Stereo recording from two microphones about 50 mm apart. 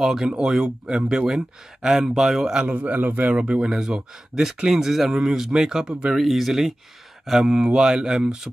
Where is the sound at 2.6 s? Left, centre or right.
Right.